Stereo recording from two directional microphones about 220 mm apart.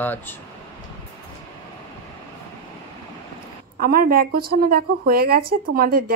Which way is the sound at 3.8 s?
40° right (ahead or behind).